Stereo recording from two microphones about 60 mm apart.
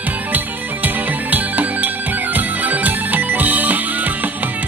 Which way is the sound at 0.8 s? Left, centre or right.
Right.